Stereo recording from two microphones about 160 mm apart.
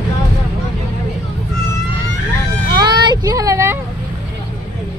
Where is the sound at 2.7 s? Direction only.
25° right (ahead or behind).